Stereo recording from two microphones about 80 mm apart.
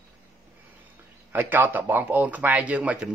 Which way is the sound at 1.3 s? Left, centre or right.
Right.